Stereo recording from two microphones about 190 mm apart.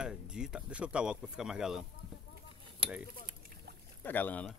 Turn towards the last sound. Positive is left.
turn(degrees=10)  # may be behind; listen again after turning